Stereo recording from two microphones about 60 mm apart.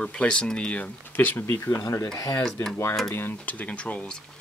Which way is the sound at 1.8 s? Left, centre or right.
Left.